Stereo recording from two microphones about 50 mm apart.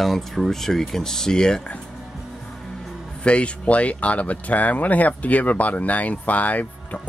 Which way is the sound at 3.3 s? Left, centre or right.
Left.